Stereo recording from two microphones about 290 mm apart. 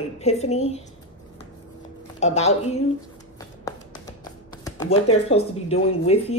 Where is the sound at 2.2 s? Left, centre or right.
Left.